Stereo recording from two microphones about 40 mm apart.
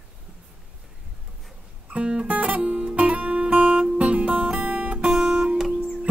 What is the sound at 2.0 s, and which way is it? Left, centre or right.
Music, right.